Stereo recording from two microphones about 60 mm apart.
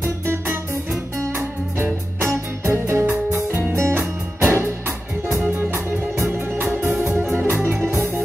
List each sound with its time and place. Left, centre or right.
0.0 s music: right
5.4 s music: right